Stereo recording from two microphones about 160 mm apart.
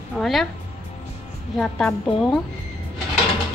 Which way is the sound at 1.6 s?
5° left (ahead or behind).